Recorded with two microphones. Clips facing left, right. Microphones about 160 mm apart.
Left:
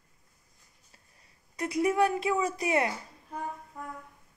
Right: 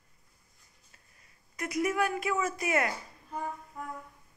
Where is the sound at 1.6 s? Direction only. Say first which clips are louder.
Left 4 dB; 30° left (ahead or behind).